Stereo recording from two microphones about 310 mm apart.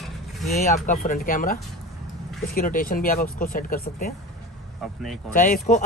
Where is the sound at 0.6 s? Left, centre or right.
Left.